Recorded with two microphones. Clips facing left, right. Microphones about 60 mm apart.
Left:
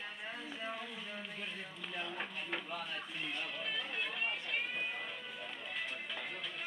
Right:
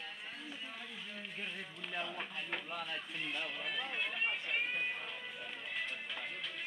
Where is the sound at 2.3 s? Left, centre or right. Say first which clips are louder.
Even; centre.